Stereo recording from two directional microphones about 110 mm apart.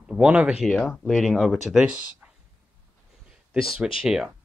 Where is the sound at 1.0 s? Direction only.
Centre (ahead or behind).